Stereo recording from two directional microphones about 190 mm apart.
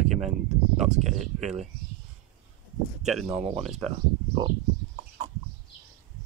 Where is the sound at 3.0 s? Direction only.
Centre (ahead or behind).